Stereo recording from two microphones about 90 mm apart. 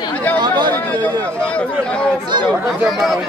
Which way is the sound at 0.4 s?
55° right (ahead or behind).